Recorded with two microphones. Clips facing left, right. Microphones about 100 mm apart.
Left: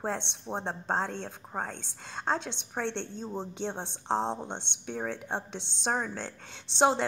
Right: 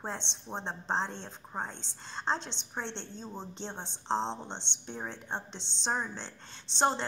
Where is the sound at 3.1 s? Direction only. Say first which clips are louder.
Left 5 dB; 15° left (ahead or behind).